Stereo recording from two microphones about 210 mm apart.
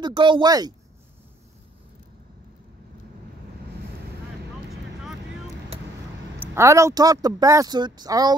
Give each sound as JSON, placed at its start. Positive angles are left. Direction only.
{"t": 0.0, "sound": "speech", "side_deg": -20}
{"t": 6.5, "sound": "speech", "side_deg": -15}